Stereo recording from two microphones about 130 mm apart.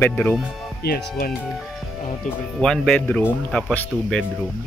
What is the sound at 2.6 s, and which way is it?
Speech, 5° left (ahead or behind).